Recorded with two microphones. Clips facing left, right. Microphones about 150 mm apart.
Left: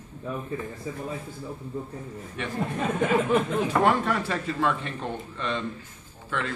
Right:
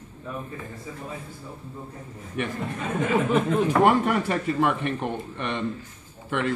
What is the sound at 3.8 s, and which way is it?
Speech, 15° right (ahead or behind).